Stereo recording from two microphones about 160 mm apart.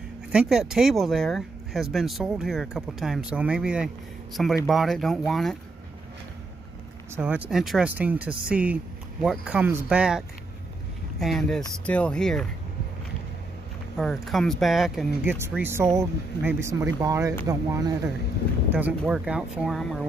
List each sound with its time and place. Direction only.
0.3 s speech: 5° right (ahead or behind)
7.2 s speech: 10° right (ahead or behind)
13.9 s speech: centre (ahead or behind)
15.2 s speech: 15° right (ahead or behind)
18.7 s speech: 10° right (ahead or behind)